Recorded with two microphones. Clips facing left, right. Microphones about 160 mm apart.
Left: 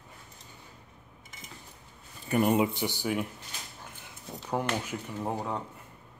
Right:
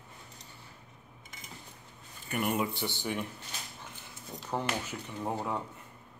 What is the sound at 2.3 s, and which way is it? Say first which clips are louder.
Speech: left 6 dB; 30° left (ahead or behind).